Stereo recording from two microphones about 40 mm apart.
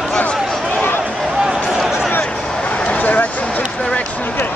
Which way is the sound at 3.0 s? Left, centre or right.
Left.